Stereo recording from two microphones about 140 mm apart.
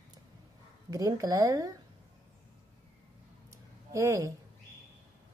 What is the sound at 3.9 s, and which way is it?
Speech, 25° right (ahead or behind).